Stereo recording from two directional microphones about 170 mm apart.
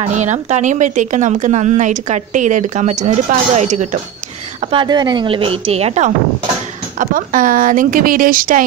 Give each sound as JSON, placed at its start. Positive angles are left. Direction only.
{"t": 0.0, "sound": "a woman's voice", "side_deg": -45}
{"t": 4.6, "sound": "speech", "side_deg": -25}
{"t": 7.0, "sound": "a woman's voice", "side_deg": -50}